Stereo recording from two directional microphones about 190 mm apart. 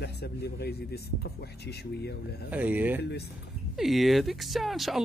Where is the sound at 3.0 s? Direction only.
60° left (ahead or behind).